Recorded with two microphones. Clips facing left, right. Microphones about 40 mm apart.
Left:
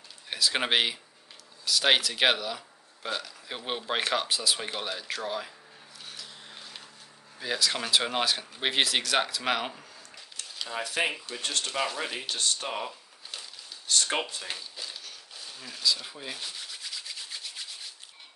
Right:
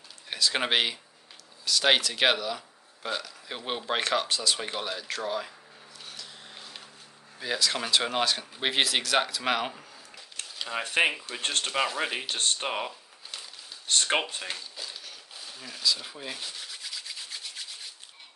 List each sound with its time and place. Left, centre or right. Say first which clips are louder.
0.3 s speech: even; centre
6.0 s a sound: even; centre
7.3 s speech: even; centre
10.8 s speech: right 4 dB; right
12.0 s speech: right 3 dB; right
12.3 s speech: right 2 dB; right
13.8 s speech: right 2 dB; right
14.5 s a sound: even; centre